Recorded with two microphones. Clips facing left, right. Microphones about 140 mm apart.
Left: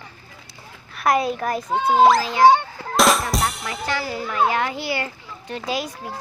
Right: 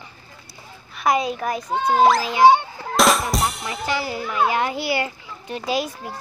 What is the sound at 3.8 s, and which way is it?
A child's voice, 20° right (ahead or behind).